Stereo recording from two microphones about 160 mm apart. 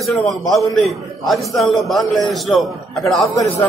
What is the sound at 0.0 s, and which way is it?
A man's voice, centre (ahead or behind).